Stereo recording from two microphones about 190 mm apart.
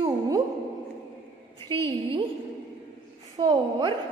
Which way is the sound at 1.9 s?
30° right (ahead or behind).